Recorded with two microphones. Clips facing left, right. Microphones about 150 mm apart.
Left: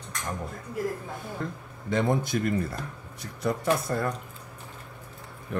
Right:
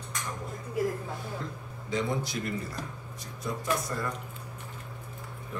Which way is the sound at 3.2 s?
65° left (ahead or behind).